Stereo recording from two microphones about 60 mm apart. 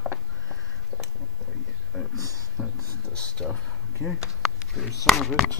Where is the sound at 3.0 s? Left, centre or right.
Centre.